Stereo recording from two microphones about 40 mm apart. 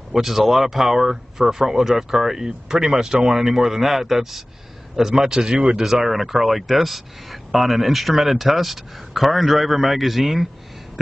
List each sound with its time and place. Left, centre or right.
0.1 s speech: centre
5.9 s speech: centre